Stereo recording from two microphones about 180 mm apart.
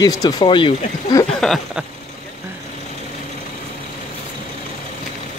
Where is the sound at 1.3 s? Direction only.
Centre (ahead or behind).